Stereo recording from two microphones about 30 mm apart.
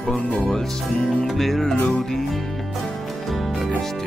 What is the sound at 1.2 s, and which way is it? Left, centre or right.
Music, centre.